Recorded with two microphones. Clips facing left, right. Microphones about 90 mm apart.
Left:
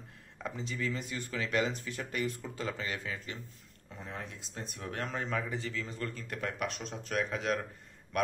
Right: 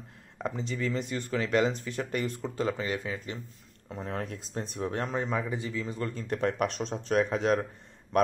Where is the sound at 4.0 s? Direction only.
50° right (ahead or behind).